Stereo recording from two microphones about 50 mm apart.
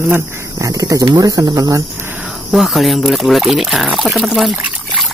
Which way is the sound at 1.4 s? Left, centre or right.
Right.